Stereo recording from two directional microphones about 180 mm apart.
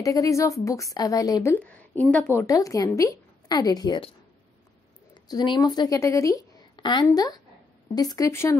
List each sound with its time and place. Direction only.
0.0 s speech: 20° left (ahead or behind)
5.1 s a woman's voice: 25° left (ahead or behind)